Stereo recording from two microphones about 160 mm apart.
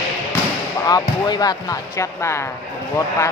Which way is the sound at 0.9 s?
25° left (ahead or behind).